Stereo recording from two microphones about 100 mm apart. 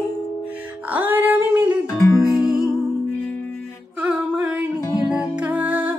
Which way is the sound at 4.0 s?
15° right (ahead or behind).